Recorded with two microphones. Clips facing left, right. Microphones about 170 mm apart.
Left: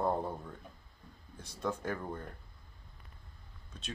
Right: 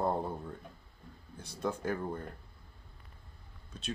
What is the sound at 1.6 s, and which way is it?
Speech, 5° right (ahead or behind).